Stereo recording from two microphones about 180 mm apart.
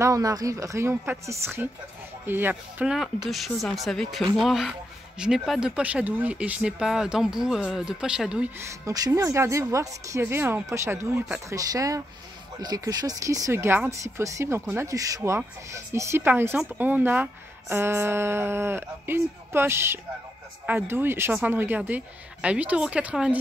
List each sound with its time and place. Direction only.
0.0 s speech: 20° right (ahead or behind)
8.8 s speech: 20° right (ahead or behind)